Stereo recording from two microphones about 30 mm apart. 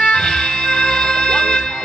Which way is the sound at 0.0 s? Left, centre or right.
Left.